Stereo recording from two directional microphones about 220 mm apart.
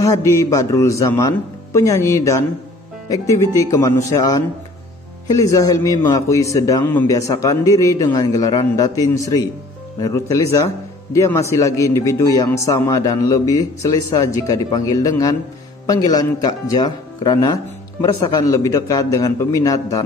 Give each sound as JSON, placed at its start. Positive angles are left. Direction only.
{"t": 0.0, "sound": "a man's voice", "side_deg": 15}